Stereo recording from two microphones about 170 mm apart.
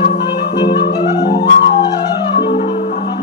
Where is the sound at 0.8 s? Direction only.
30° left (ahead or behind).